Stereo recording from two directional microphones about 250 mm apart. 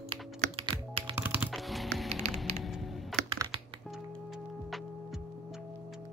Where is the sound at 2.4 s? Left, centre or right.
Centre.